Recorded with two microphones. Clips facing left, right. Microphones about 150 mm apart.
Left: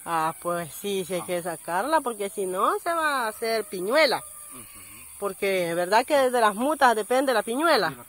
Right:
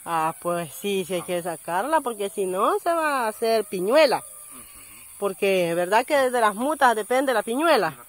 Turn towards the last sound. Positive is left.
turn(degrees=-10)  # may be behind; listen again after turning